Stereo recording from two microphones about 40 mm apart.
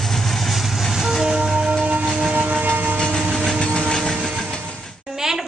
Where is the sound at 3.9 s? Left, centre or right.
Centre.